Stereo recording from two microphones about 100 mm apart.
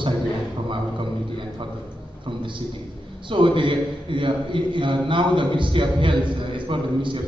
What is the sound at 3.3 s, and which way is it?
A man's voice, 55° right (ahead or behind).